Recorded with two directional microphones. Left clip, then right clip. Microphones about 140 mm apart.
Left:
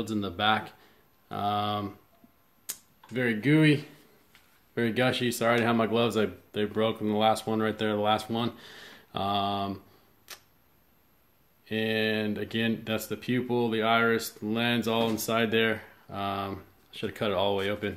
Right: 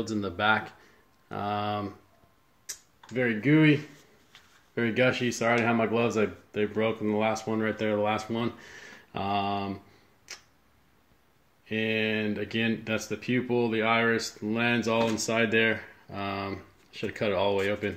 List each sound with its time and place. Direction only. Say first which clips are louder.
0.1 s speech: right 1 dB; 15° left (ahead or behind)
3.1 s speech: right 1 dB; 15° left (ahead or behind)
4.7 s speech: right 1 dB; 15° left (ahead or behind)
11.7 s speech: even; 5° left (ahead or behind)